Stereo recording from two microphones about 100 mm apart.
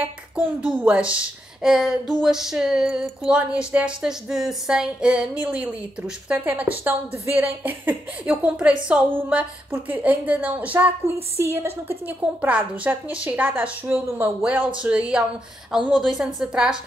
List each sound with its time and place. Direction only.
0.7 s a woman's voice: 10° right (ahead or behind)
11.3 s a woman's voice: 25° right (ahead or behind); by 16.7 s 5° right (ahead or behind)